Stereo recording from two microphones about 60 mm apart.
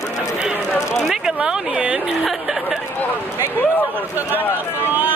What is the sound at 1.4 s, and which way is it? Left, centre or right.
Speech, centre.